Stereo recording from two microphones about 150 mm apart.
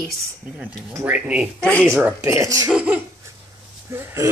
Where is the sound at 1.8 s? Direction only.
15° right (ahead or behind).